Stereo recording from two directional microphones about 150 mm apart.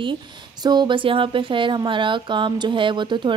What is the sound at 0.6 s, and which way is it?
Speech, 30° right (ahead or behind).